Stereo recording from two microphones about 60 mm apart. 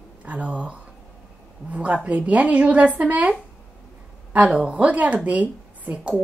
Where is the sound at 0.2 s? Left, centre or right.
Right.